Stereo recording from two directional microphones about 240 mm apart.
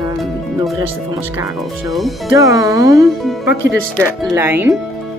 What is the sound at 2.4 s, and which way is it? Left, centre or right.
Speech, centre.